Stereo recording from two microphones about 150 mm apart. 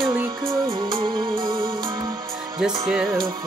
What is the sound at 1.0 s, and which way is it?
Music, 30° right (ahead or behind).